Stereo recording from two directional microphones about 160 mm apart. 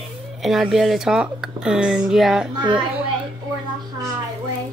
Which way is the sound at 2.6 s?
30° right (ahead or behind).